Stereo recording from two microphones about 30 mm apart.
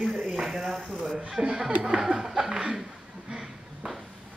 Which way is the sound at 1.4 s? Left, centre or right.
Right.